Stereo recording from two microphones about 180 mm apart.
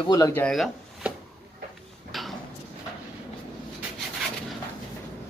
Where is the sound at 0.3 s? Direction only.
5° left (ahead or behind).